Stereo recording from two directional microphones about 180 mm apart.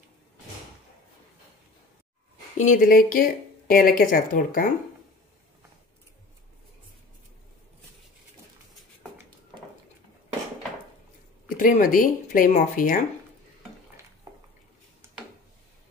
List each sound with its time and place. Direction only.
2.5 s speech: 45° left (ahead or behind)
11.4 s speech: 50° left (ahead or behind)